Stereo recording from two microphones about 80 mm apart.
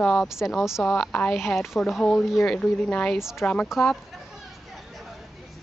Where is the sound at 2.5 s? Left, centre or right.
Centre.